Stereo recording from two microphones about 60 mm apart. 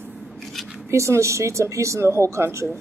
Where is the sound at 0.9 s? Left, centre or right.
Right.